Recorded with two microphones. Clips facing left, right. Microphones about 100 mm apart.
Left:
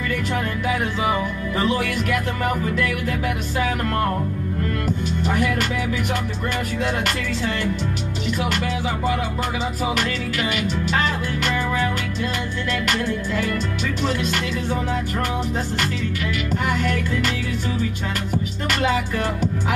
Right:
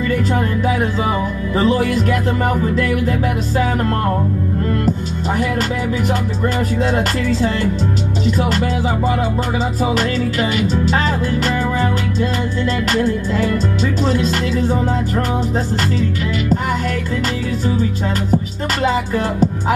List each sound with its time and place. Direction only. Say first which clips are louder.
1.6 s music: right 7 dB; 30° right (ahead or behind)
4.8 s speech: right 4 dB; 35° right (ahead or behind)
6.8 s music: right 6 dB; 35° right (ahead or behind)
14.0 s music: right 4 dB; 35° right (ahead or behind)
18.3 s music: right 5 dB; 30° right (ahead or behind)